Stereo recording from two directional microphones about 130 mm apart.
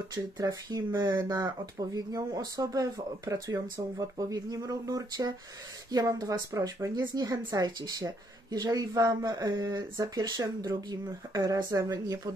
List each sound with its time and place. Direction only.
0.1 s a woman's voice: 30° right (ahead or behind)